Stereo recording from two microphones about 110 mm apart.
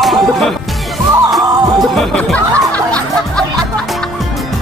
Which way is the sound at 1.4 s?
40° right (ahead or behind).